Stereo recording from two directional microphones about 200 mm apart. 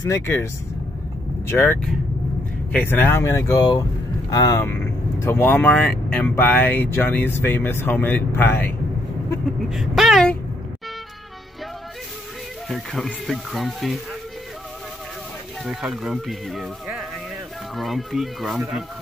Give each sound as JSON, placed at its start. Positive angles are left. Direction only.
{"t": 0.0, "sound": "speech", "side_deg": 15}
{"t": 1.5, "sound": "speech", "side_deg": 10}
{"t": 9.7, "sound": "speech", "side_deg": 0}
{"t": 12.6, "sound": "speech", "side_deg": 0}
{"t": 15.6, "sound": "speech", "side_deg": 0}